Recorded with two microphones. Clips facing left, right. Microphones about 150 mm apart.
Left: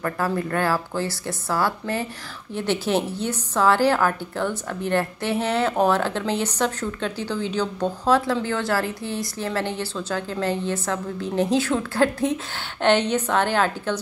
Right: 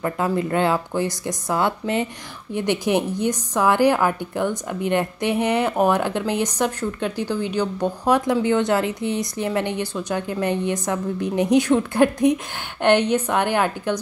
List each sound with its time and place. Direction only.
0.0 s a woman's voice: 15° right (ahead or behind)